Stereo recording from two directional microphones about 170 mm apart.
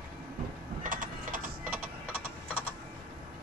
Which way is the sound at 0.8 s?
50° right (ahead or behind).